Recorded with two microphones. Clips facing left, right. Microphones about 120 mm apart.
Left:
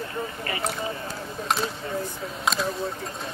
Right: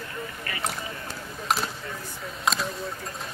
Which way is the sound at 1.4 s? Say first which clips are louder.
Left 1 dB; centre (ahead or behind).